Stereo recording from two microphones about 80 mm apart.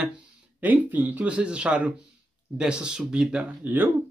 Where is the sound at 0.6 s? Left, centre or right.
Right.